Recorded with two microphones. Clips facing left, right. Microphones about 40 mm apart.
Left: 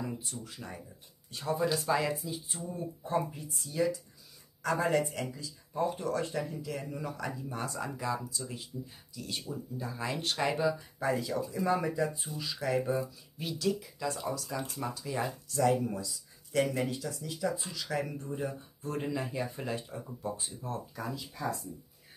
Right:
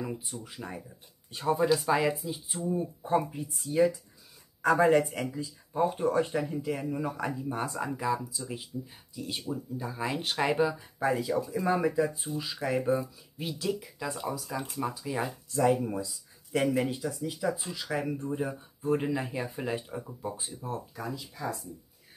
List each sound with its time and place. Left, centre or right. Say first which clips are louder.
0.0 s speech: right 2 dB; centre
3.7 s speech: right 6 dB; right
8.0 s speech: right 4 dB; centre